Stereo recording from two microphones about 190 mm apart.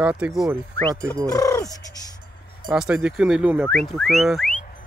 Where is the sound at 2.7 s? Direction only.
5° right (ahead or behind).